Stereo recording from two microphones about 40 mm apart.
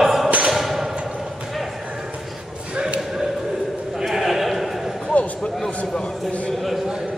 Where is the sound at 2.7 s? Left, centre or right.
Right.